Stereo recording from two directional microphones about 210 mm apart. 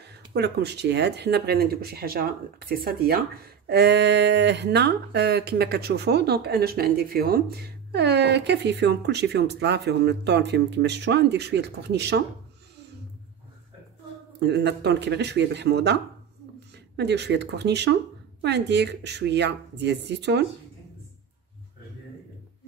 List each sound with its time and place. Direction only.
0.0 s speech: 55° right (ahead or behind)
14.4 s speech: 55° right (ahead or behind)